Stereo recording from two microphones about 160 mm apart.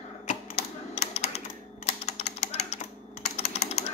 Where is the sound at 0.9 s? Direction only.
40° left (ahead or behind).